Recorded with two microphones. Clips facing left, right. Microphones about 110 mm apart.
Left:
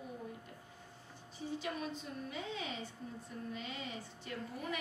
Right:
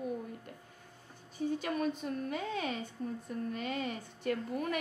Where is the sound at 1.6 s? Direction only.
55° right (ahead or behind).